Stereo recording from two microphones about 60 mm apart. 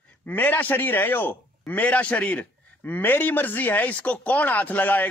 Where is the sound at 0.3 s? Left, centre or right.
Left.